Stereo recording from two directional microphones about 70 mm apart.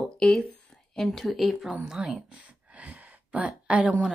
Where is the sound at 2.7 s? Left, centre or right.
Centre.